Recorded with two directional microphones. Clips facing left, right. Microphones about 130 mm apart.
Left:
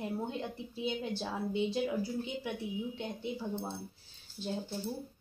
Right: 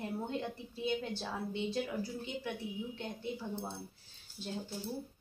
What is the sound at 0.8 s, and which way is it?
A woman's voice, 15° left (ahead or behind).